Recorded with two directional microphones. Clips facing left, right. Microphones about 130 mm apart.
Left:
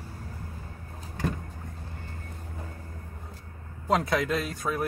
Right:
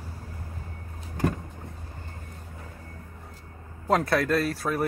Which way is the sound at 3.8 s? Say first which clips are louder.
Right 2 dB; centre (ahead or behind).